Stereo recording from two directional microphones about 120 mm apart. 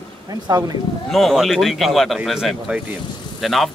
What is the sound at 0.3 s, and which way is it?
Speech, 30° right (ahead or behind).